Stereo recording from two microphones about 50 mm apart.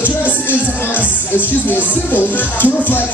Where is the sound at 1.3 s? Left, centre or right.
Left.